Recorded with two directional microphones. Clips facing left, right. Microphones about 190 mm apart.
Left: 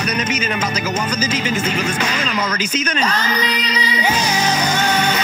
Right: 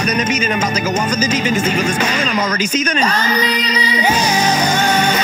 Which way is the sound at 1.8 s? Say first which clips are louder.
Right 3 dB; 45° right (ahead or behind).